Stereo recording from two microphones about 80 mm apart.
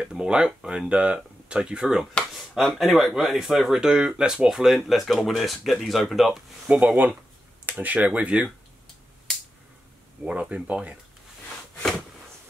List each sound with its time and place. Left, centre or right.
0.0 s speech: centre
6.7 s speech: centre
10.5 s speech: centre